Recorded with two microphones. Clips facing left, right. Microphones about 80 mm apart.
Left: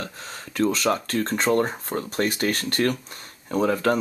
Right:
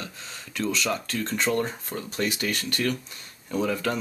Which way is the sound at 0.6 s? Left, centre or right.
Left.